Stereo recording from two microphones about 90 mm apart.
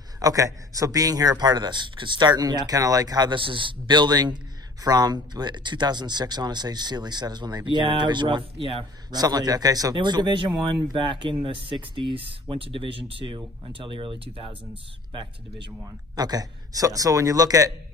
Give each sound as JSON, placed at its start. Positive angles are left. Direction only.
{"t": 0.2, "sound": "speech", "side_deg": -40}
{"t": 3.3, "sound": "speech", "side_deg": -70}
{"t": 9.1, "sound": "speech", "side_deg": -50}
{"t": 9.9, "sound": "speech", "side_deg": -60}
{"t": 11.4, "sound": "speech", "side_deg": -75}
{"t": 16.2, "sound": "speech", "side_deg": -45}